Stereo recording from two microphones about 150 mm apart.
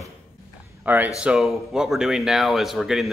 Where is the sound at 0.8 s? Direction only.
10° right (ahead or behind).